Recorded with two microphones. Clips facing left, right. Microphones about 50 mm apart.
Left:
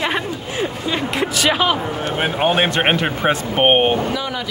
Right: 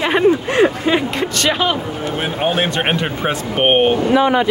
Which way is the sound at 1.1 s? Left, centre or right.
Centre.